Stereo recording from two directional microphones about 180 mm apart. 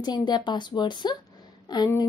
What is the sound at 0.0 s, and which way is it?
A woman's voice, 25° left (ahead or behind).